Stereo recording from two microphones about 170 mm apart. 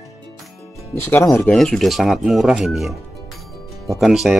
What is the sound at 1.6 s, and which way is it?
Speech, centre (ahead or behind).